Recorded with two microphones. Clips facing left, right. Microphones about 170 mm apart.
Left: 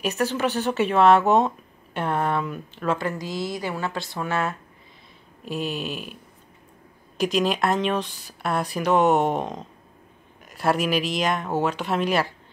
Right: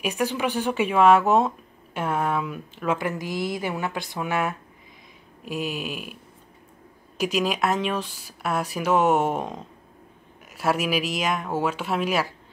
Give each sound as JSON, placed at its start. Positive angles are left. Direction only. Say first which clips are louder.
{"t": 0.0, "sound": "speech", "louder": "left 1 dB", "side_deg": -10}
{"t": 3.0, "sound": "speech", "louder": "even", "side_deg": -20}
{"t": 7.2, "sound": "speech", "louder": "left 2 dB", "side_deg": -5}